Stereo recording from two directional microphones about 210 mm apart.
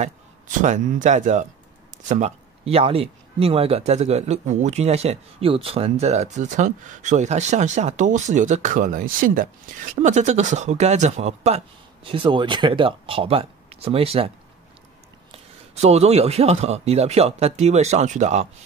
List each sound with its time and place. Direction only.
0.0 s speech: 35° right (ahead or behind)
15.7 s speech: 30° right (ahead or behind)